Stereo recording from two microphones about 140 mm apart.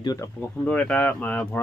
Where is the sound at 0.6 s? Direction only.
10° left (ahead or behind).